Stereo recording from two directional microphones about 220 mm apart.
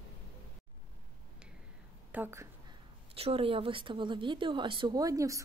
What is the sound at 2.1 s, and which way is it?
Speech, 10° right (ahead or behind).